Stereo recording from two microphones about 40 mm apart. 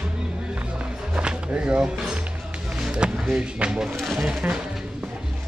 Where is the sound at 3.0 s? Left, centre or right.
Right.